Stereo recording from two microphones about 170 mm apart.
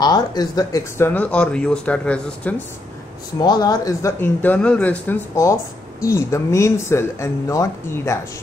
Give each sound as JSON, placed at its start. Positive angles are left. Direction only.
{"t": 0.0, "sound": "speech", "side_deg": 25}
{"t": 3.3, "sound": "speech", "side_deg": 25}